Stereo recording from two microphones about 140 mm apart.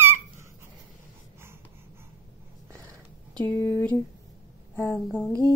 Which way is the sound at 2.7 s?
30° right (ahead or behind).